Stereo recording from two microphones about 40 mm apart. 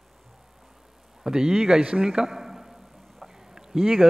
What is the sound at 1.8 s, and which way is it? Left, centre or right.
Speech, right.